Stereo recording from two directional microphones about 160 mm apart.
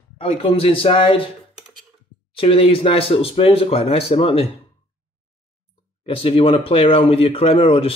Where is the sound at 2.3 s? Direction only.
35° left (ahead or behind).